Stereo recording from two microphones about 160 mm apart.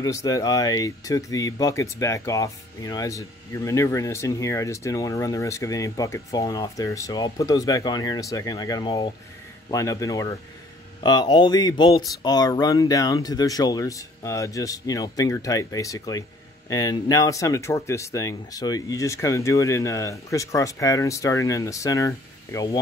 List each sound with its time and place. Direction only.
0.0 s speech: 20° left (ahead or behind)